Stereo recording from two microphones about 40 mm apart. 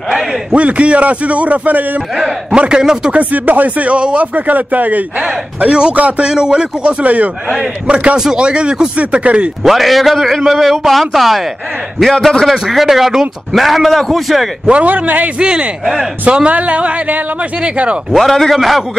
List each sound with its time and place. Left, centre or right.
0.6 s a man's voice: right
2.7 s speech: centre
3.1 s a man's voice: right
5.7 s speech: right
5.9 s a man's voice: right
6.2 s speech: right
9.6 s a man's voice: centre
14.7 s a man's voice: right
15.3 s speech: right
15.8 s a man's voice: centre
16.4 s a man's voice: right
18.3 s a man's voice: centre
18.6 s a man's voice: centre